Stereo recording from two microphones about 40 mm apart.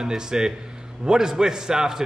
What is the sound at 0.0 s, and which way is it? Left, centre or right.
A man's voice, centre.